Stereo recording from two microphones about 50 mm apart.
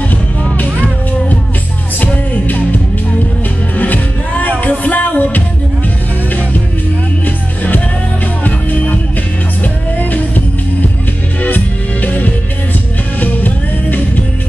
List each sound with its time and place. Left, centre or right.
0.1 s music: left
2.4 s music: left
7.2 s music: left
11.4 s music: left